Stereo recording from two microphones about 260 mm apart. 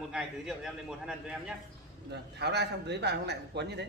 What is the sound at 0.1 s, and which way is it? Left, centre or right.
A man's voice, centre.